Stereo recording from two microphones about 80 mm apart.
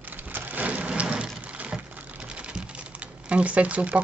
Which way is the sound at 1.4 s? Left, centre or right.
Centre.